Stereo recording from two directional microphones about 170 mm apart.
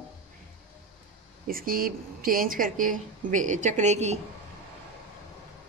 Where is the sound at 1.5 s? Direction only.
55° right (ahead or behind).